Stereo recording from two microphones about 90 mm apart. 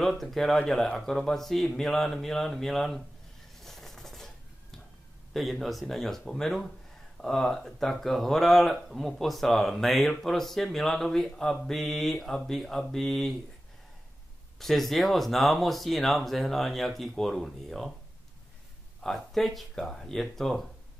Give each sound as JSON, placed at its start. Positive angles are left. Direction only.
{"t": 0.0, "sound": "speech", "side_deg": 0}
{"t": 3.6, "sound": "a sound", "side_deg": 5}
{"t": 5.3, "sound": "speech", "side_deg": 0}
{"t": 14.6, "sound": "speech", "side_deg": 0}
{"t": 19.0, "sound": "speech", "side_deg": 0}